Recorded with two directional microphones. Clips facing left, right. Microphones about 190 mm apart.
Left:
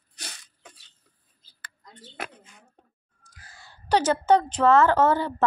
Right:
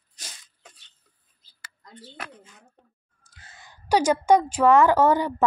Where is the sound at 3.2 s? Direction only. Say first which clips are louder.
Even; 25° right (ahead or behind).